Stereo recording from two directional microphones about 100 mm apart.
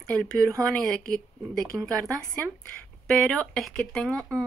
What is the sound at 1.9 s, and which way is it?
Speech, 35° right (ahead or behind).